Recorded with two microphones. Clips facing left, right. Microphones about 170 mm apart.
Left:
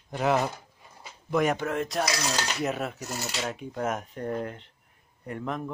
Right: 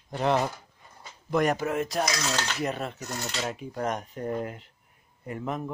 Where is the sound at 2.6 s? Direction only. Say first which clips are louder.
Left 1 dB; 5° left (ahead or behind).